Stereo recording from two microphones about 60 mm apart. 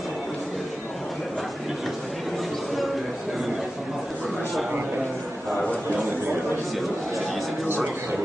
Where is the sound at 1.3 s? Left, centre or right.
Centre.